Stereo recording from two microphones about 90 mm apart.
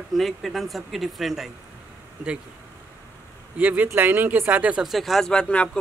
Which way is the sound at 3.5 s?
15° right (ahead or behind).